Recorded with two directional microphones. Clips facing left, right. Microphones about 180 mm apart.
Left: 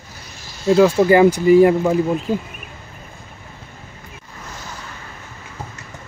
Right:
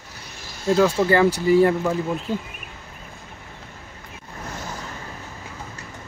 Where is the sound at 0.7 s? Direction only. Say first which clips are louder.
Left 5 dB; 15° left (ahead or behind).